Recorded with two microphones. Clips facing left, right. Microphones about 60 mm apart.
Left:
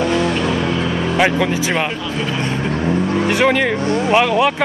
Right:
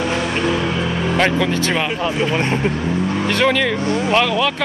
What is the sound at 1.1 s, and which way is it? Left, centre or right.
Speech, centre.